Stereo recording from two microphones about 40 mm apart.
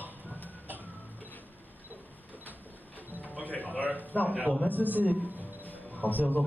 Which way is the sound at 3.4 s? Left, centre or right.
Left.